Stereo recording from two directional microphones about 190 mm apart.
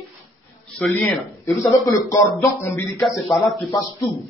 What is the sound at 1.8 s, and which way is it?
Speech, 20° left (ahead or behind).